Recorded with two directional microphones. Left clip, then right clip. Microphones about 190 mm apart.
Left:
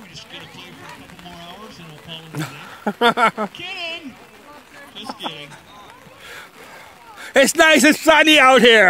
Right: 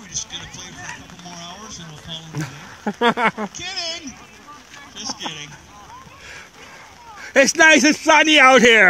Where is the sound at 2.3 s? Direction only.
5° left (ahead or behind).